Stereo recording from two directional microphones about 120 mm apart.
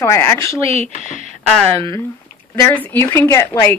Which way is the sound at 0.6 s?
55° right (ahead or behind).